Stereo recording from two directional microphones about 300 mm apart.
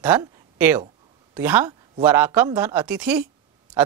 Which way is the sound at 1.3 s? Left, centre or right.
Centre.